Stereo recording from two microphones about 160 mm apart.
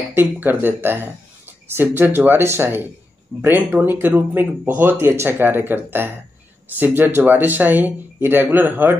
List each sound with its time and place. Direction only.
0.1 s speech: 15° right (ahead or behind)